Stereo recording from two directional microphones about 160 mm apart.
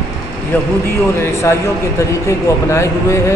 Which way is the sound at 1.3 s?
20° left (ahead or behind).